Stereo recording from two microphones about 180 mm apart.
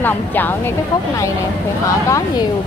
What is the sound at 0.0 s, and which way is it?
Speech, 10° left (ahead or behind).